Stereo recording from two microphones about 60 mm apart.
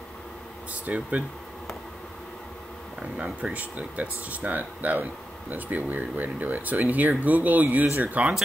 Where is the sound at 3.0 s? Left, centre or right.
Right.